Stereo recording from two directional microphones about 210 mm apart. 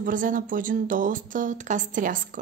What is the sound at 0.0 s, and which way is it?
Speech, 40° right (ahead or behind).